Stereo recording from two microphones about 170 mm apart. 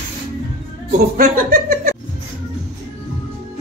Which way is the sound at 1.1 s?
60° right (ahead or behind).